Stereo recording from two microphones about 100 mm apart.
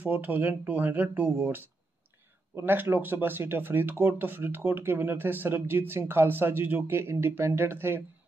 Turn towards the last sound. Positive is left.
turn(degrees=-25)  # may be behind; listen again after turning